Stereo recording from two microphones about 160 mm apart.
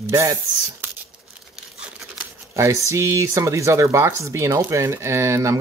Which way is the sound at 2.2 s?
20° right (ahead or behind).